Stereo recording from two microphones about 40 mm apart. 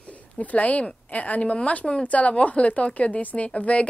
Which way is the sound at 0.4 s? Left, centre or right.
Left.